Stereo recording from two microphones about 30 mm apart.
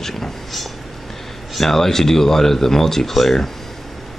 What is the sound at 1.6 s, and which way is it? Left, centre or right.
Speech, centre.